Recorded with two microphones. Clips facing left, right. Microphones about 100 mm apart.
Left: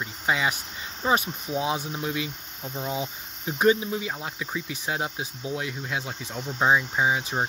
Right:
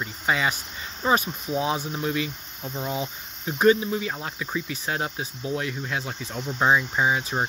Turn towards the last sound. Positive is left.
turn(degrees=10)  # may be behind; listen again after turning